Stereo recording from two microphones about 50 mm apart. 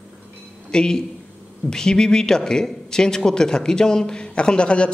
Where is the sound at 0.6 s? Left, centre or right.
Centre.